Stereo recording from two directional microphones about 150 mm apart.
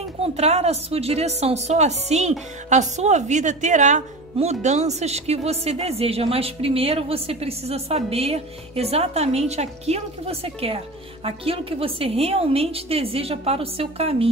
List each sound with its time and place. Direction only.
0.2 s a woman's voice: 45° right (ahead or behind)